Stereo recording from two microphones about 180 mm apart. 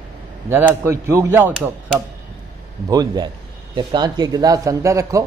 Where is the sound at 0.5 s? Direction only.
10° right (ahead or behind).